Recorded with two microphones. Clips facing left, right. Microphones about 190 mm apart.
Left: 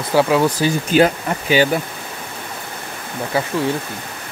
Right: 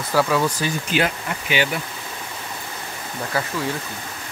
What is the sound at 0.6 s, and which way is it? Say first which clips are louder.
Speech: left 8 dB; 40° left (ahead or behind).